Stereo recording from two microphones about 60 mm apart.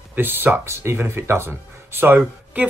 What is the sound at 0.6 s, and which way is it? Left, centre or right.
Speech, right.